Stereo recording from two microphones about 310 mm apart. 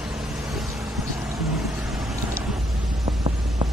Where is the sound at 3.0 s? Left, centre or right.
Centre.